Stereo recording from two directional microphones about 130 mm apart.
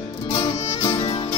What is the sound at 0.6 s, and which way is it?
Music, 45° left (ahead or behind).